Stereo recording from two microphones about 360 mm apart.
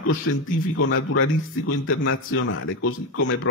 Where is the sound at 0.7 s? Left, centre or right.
Left.